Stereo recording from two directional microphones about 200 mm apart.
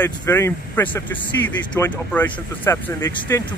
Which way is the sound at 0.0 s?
10° left (ahead or behind).